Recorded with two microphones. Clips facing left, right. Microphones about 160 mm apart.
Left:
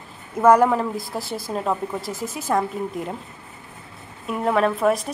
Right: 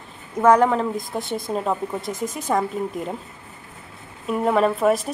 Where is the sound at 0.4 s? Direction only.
5° left (ahead or behind).